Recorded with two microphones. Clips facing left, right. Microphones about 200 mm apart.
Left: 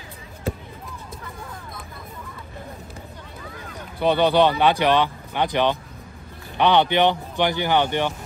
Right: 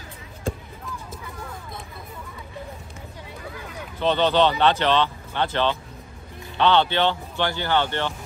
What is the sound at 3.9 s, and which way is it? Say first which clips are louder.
Speech: left 2 dB; 15° left (ahead or behind).